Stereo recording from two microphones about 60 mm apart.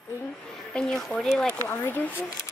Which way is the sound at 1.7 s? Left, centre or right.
Left.